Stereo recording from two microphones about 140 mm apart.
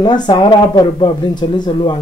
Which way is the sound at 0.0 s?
30° left (ahead or behind).